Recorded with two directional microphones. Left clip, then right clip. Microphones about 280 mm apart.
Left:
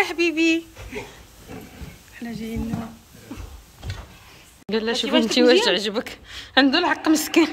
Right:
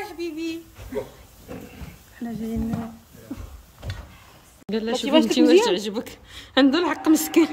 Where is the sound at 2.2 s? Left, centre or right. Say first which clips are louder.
Right 1 dB; right.